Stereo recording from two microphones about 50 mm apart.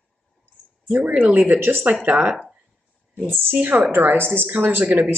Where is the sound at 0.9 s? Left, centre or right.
Right.